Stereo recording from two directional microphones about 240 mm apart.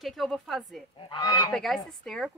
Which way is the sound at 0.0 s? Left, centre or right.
Centre.